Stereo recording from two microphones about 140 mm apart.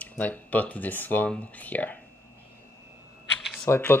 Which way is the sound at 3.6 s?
15° left (ahead or behind).